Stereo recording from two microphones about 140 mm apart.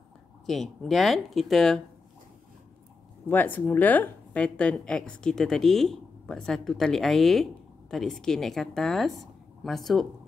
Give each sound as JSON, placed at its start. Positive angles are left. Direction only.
{"t": 0.5, "sound": "a woman's voice", "side_deg": 0}
{"t": 3.3, "sound": "a woman's voice", "side_deg": 10}